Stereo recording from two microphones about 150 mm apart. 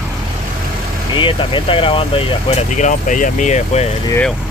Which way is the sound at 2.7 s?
55° left (ahead or behind).